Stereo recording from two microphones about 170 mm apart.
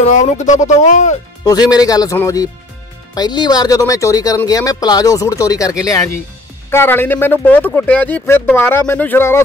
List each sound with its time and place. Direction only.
0.0 s speech: 45° left (ahead or behind)
1.4 s speech: 25° left (ahead or behind)